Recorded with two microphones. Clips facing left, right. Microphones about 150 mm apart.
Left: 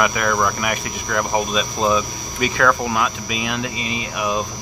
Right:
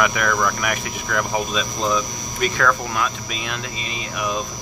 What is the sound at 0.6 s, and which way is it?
Speech, 5° left (ahead or behind).